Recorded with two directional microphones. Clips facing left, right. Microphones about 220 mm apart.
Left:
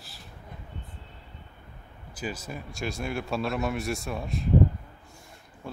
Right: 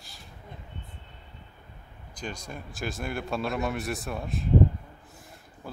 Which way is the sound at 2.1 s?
5° left (ahead or behind).